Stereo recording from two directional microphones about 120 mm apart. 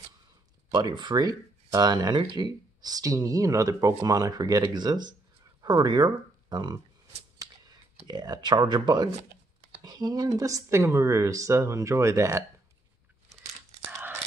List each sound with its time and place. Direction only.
0.7 s speech: 40° right (ahead or behind)
7.3 s a sound: 35° right (ahead or behind)
8.1 s speech: 35° right (ahead or behind)